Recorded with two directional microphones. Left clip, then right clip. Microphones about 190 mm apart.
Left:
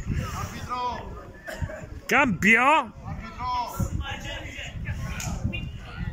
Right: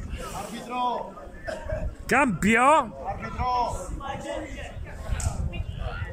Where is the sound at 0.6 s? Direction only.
45° right (ahead or behind).